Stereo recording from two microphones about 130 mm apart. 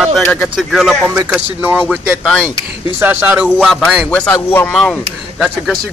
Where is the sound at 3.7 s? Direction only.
Centre (ahead or behind).